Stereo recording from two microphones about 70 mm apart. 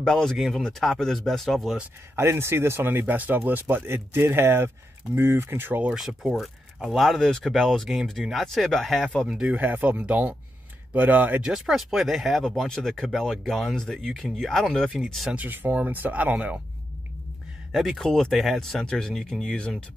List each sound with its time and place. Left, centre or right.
0.0 s speech: centre
2.1 s speech: right
5.9 s speech: centre
9.4 s speech: right
11.4 s speech: centre
15.3 s speech: right
17.7 s speech: centre
18.3 s speech: centre